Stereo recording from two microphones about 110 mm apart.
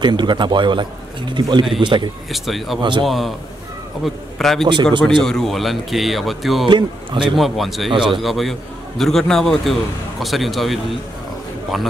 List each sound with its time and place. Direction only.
0.0 s a man's voice: 45° right (ahead or behind)
2.3 s a man's voice: centre (ahead or behind)
2.8 s a man's voice: 45° right (ahead or behind)
3.1 s a man's voice: centre (ahead or behind)
7.9 s a man's voice: 50° right (ahead or behind)
8.2 s a man's voice: centre (ahead or behind)